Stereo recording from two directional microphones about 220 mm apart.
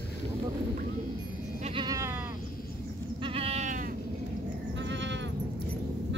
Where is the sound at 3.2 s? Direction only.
25° right (ahead or behind).